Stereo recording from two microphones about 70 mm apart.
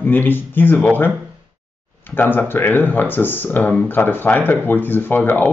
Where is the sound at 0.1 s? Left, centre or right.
Left.